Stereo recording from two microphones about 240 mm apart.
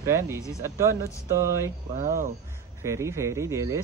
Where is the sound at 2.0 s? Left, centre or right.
Right.